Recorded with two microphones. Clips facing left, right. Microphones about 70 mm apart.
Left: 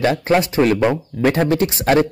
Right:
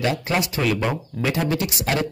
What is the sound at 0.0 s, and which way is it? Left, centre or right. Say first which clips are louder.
Speech: left 7 dB; left.